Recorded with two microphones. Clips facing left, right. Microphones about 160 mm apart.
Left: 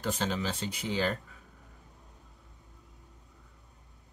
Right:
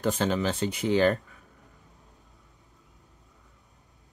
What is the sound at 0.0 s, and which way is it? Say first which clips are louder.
Speech: right 6 dB; 55° right (ahead or behind).